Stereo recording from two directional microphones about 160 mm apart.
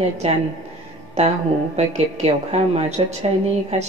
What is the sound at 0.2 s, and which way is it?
Speech, 45° right (ahead or behind).